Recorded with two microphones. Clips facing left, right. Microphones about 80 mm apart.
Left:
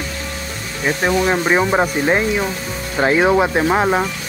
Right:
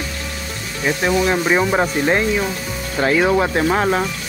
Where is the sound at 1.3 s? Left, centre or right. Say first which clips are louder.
Left 1 dB; centre.